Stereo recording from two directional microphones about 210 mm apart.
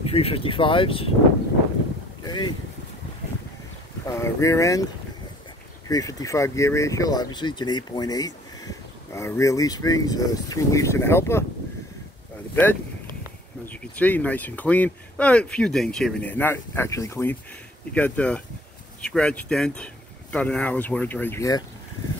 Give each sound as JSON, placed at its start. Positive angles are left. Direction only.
{"t": 0.0, "sound": "speech", "side_deg": 30}
{"t": 2.2, "sound": "boat", "side_deg": 20}
{"t": 4.0, "sound": "speech", "side_deg": 15}
{"t": 5.9, "sound": "speech", "side_deg": 15}
{"t": 13.7, "sound": "speech", "side_deg": 10}